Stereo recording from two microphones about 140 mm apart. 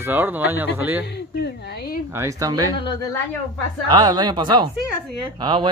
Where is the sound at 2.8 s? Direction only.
30° left (ahead or behind).